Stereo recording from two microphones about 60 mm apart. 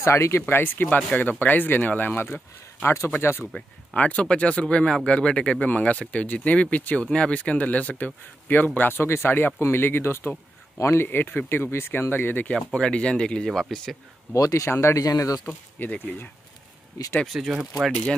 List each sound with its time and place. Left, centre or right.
0.0 s speech: left
0.5 s speech: left
0.8 s speech: left
3.9 s speech: left
12.5 s speech: centre
13.5 s speech: centre
14.3 s speech: left
14.7 s speech: left
15.0 s speech: left
15.8 s speech: left
17.5 s speech: centre